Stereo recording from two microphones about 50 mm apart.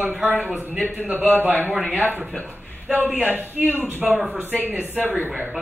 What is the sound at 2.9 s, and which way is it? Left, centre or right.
A man's voice, right.